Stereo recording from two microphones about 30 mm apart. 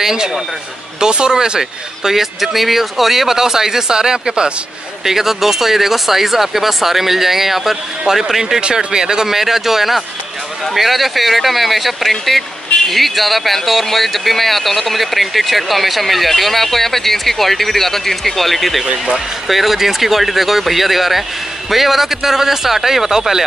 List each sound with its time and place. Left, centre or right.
0.0 s speech: centre
5.0 s speech: centre
9.3 s speech: centre